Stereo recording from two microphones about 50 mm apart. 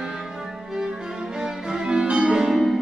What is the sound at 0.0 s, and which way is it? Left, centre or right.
Music, centre.